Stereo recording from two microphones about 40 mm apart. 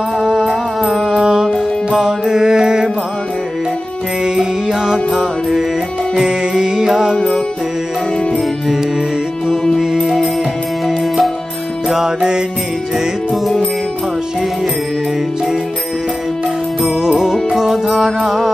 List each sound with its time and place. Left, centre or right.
0.2 s music: centre
4.2 s music: centre
5.1 s music: centre
6.1 s music: centre
6.9 s music: centre
7.2 s music: centre
9.8 s music: centre
11.9 s music: centre
12.9 s music: centre
17.0 s music: centre